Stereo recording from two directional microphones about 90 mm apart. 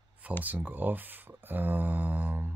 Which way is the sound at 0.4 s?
20° right (ahead or behind).